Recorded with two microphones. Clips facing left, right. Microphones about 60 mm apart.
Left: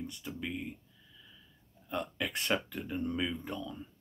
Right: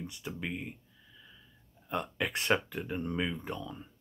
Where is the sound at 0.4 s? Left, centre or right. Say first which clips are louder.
Even; right.